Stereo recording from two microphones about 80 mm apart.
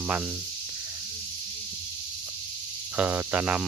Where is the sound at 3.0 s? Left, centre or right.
Right.